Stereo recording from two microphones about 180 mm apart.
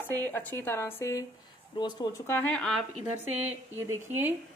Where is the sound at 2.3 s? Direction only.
5° left (ahead or behind).